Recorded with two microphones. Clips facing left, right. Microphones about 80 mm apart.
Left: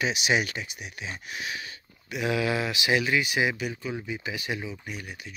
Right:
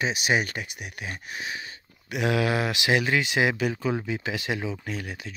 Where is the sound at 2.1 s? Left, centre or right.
Right.